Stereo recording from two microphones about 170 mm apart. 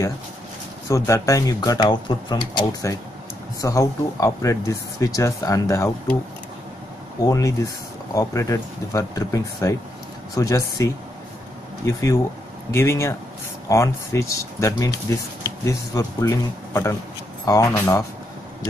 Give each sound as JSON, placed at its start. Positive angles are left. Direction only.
{"t": 0.8, "sound": "speech", "side_deg": 20}
{"t": 7.2, "sound": "speech", "side_deg": 20}